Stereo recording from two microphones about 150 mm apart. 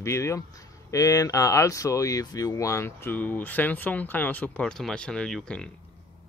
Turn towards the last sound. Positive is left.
turn(degrees=5)  # may be behind; listen again after turning